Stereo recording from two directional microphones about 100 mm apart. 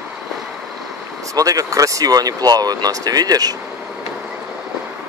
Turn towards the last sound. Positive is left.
turn(degrees=-40)  # may be behind; listen again after turning